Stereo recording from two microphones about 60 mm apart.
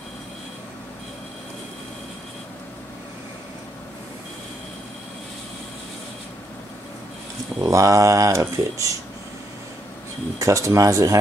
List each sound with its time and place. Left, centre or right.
7.6 s speech: right
10.4 s speech: right